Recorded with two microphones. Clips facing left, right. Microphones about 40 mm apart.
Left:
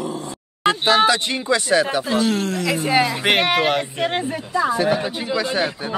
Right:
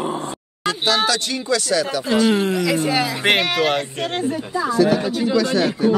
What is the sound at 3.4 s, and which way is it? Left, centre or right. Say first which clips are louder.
Speech: left 1 dB; centre.